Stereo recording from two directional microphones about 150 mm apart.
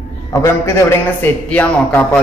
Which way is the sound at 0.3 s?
20° left (ahead or behind).